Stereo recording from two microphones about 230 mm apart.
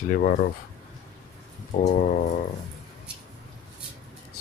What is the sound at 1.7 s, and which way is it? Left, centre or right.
Speech, left.